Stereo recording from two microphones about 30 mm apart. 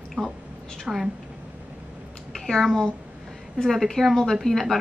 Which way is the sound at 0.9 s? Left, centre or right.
Centre.